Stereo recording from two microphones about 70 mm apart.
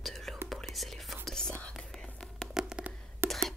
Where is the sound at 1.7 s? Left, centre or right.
Centre.